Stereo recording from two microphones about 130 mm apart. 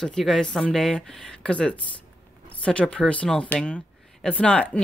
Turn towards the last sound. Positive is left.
turn(degrees=10)  # may be behind; listen again after turning